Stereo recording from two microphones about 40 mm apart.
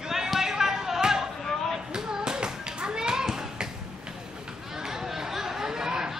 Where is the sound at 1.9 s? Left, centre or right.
Centre.